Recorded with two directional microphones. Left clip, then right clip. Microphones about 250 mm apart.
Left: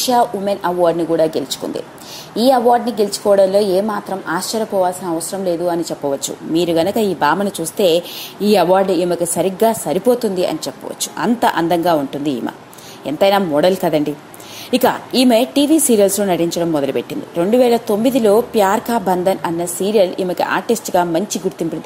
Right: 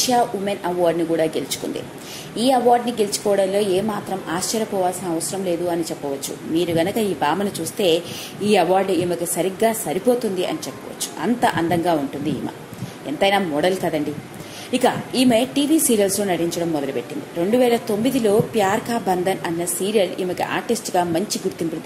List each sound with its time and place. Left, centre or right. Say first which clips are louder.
0.1 s a woman's voice: left 8 dB; left
5.7 s a woman's voice: left 5 dB; left